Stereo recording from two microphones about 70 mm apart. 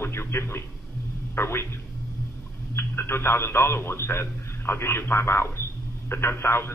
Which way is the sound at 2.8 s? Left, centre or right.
Left.